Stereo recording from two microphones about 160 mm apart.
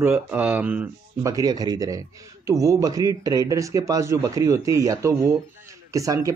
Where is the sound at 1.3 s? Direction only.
25° right (ahead or behind).